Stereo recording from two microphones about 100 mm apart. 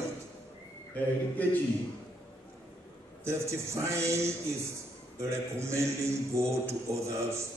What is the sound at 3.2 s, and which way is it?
A man's voice, 30° right (ahead or behind).